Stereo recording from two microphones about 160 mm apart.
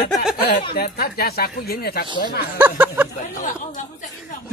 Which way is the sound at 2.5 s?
10° right (ahead or behind).